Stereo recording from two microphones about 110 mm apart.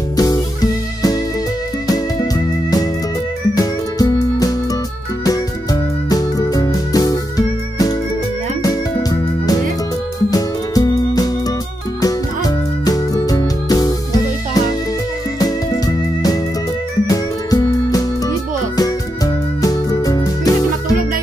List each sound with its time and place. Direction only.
0.1 s music: 35° left (ahead or behind)